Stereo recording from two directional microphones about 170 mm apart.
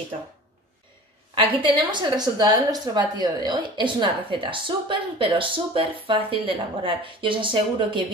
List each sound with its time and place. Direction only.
1.3 s a woman's voice: 30° right (ahead or behind)